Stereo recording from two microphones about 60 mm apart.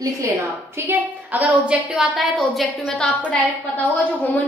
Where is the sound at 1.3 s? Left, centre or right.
Right.